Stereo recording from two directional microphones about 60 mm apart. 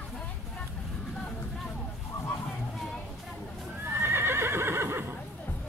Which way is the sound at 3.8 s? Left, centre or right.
Right.